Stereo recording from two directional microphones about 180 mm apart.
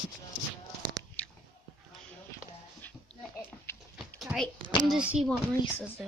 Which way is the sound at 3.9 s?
Centre (ahead or behind).